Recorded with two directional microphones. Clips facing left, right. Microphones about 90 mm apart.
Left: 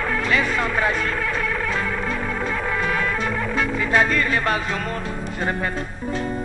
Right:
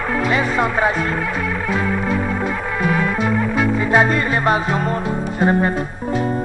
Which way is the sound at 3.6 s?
20° right (ahead or behind).